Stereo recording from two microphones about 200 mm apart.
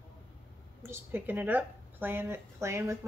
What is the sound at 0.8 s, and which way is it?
A woman's voice, 10° right (ahead or behind).